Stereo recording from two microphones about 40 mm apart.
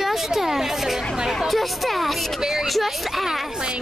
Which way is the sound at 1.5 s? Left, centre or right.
Centre.